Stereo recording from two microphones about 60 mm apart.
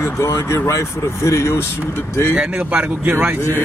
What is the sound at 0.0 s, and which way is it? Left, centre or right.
Speech, left.